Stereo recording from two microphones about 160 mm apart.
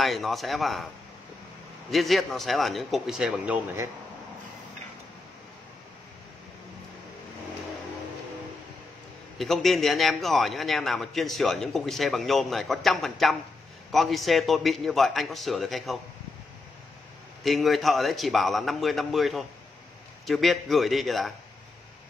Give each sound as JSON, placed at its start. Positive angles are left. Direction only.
{"t": 0.0, "sound": "a man's voice", "side_deg": 0}
{"t": 1.9, "sound": "a man's voice", "side_deg": 0}
{"t": 9.4, "sound": "a man's voice", "side_deg": 0}
{"t": 17.4, "sound": "a man's voice", "side_deg": 0}